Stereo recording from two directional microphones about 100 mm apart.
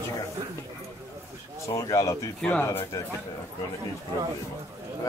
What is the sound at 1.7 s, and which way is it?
Speech, 35° left (ahead or behind).